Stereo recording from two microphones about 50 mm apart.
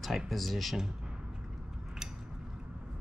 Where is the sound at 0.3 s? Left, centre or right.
Centre.